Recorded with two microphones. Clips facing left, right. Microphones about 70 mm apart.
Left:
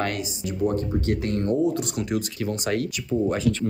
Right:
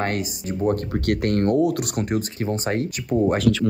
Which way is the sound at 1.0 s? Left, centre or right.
Right.